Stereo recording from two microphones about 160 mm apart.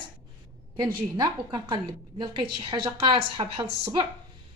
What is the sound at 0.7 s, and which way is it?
A woman's voice, 25° right (ahead or behind).